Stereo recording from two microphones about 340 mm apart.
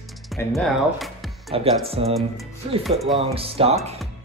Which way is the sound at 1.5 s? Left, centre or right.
Centre.